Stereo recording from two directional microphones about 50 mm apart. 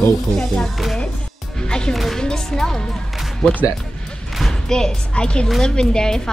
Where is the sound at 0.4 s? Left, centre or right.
Centre.